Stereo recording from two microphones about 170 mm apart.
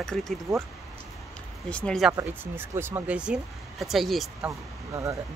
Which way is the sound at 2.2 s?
15° right (ahead or behind).